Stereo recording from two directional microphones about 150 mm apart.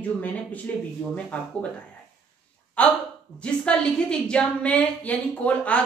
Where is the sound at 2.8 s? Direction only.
10° left (ahead or behind).